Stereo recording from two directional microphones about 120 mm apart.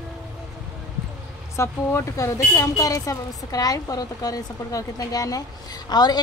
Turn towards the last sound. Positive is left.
turn(degrees=35)  # may be behind; listen again after turning